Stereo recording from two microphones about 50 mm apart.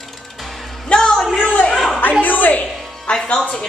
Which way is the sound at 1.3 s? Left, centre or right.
Left.